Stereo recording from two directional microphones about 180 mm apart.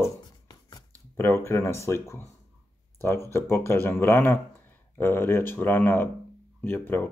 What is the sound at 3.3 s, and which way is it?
Speech, 15° left (ahead or behind).